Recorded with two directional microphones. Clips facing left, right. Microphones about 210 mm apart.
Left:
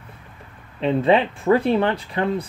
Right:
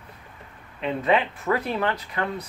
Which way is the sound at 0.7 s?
30° left (ahead or behind).